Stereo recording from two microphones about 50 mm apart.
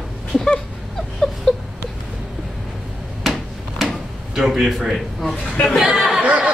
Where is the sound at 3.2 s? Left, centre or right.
Centre.